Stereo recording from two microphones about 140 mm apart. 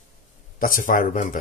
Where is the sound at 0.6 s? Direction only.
75° left (ahead or behind).